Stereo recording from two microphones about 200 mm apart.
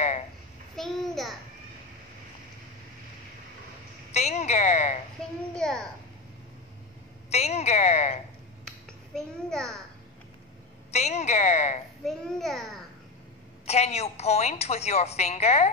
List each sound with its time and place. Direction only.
0.7 s babbling: centre (ahead or behind)
4.1 s a sound: 35° left (ahead or behind)
5.5 s a child's voice: 5° left (ahead or behind)
7.2 s a woman's voice: 30° left (ahead or behind)
9.1 s a child's voice: centre (ahead or behind)
10.9 s a woman's voice: 35° left (ahead or behind)
12.0 s a child's voice: centre (ahead or behind)
13.7 s a woman's voice: 35° left (ahead or behind)